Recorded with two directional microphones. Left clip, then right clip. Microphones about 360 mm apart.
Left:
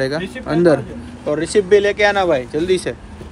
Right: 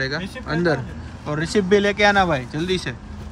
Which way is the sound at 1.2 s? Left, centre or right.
Centre.